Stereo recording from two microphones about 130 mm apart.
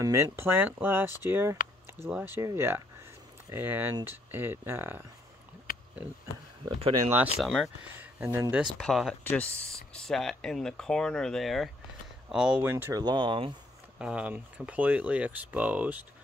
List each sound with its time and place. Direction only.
0.0 s speech: 20° right (ahead or behind)
7.3 s speech: centre (ahead or behind)
7.8 s speech: 15° right (ahead or behind)
8.7 s speech: centre (ahead or behind)
9.2 s speech: 15° left (ahead or behind)
9.8 s speech: 5° left (ahead or behind); by 13.0 s 15° right (ahead or behind)
13.0 s speech: 35° right (ahead or behind)
13.9 s speech: 10° right (ahead or behind)